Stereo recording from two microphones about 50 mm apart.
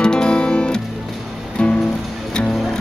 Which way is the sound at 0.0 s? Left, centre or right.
Centre.